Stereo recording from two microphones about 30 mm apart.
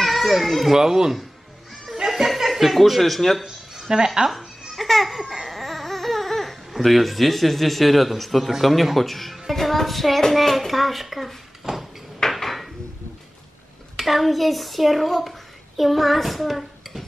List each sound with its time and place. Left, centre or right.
0.0 s children playing: centre
0.7 s speech: centre
2.2 s speech: centre
3.9 s speech: right
4.3 s babbling: centre
5.5 s a sound: centre
6.7 s a man's voice: centre
9.5 s music: centre
10.3 s a man's voice: centre
11.6 s a sound: centre
12.3 s dishes: centre
13.9 s a child's voice: centre